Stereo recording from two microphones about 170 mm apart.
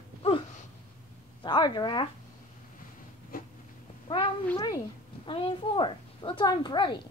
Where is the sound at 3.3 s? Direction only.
55° left (ahead or behind).